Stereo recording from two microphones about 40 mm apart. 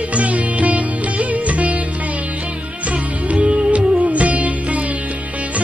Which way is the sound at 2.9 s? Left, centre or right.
Right.